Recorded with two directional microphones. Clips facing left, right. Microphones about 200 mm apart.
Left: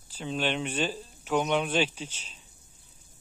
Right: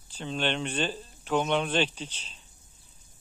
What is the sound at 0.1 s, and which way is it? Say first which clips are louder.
Speech: even; 5° left (ahead or behind).